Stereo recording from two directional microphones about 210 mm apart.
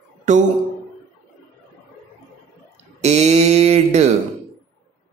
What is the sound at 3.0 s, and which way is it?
Mantra, 30° right (ahead or behind).